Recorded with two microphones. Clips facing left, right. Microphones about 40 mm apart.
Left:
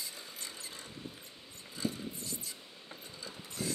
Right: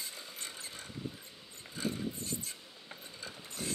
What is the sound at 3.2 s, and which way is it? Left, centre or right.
Train, right.